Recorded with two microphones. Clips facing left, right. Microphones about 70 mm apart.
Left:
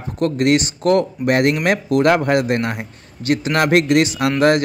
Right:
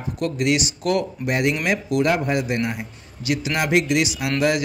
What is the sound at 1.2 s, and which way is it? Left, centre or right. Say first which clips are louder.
A man's voice: left 6 dB; left.